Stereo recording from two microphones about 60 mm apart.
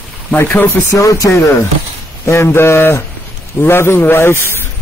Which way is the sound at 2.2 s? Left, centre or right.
Left.